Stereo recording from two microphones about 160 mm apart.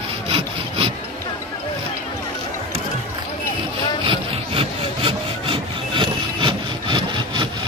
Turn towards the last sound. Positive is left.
turn(degrees=-30)  # may be behind; listen again after turning